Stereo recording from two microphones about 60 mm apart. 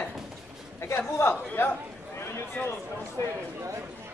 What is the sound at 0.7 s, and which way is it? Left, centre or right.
Speech, left.